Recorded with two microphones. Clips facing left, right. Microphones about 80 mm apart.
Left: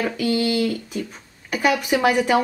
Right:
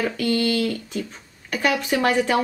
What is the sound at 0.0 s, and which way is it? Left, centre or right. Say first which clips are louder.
A woman's voice: left 1 dB; centre.